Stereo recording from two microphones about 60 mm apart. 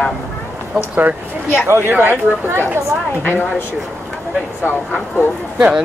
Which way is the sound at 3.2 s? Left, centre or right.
Left.